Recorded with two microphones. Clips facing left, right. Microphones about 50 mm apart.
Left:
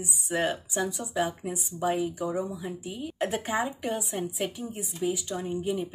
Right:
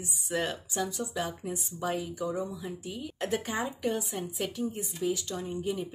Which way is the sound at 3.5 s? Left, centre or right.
Left.